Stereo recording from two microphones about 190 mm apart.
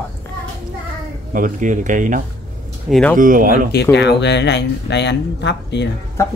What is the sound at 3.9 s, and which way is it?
Speech, 65° left (ahead or behind).